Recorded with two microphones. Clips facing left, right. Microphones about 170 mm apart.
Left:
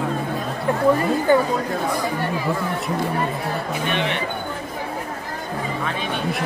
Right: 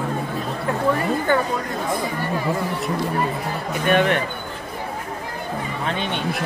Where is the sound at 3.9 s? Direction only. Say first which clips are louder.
Right 8 dB; 50° right (ahead or behind).